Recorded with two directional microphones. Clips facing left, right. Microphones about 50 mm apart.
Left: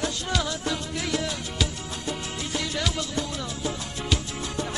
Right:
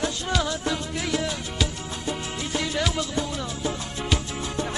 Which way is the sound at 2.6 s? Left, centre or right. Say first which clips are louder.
Right 4 dB; right.